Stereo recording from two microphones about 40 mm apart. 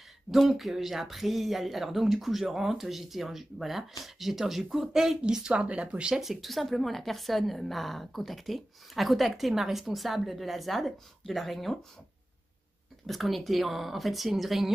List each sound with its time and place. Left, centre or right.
0.6 s a woman's voice: centre
5.5 s speech: right
6.1 s a woman's voice: centre
13.0 s a woman's voice: centre